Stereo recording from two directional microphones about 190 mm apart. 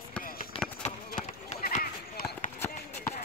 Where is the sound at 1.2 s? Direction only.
40° left (ahead or behind).